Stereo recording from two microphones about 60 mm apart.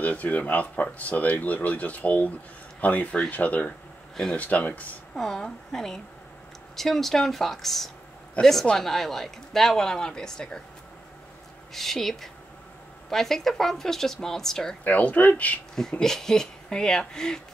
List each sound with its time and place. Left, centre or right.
0.0 s speech: left
5.1 s a woman's voice: centre
11.7 s a woman's voice: centre
14.9 s speech: left
15.7 s speech: centre